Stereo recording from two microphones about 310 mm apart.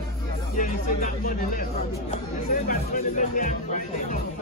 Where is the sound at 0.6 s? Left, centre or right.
Left.